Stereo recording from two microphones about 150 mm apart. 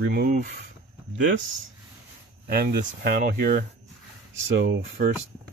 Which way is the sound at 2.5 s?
90° right.